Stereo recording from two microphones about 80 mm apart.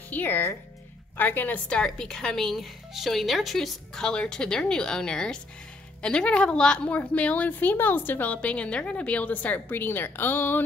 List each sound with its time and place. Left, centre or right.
0.1 s a woman's voice: left